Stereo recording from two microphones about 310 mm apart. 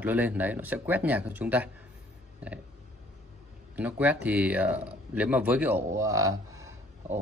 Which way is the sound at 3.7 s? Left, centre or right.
Centre.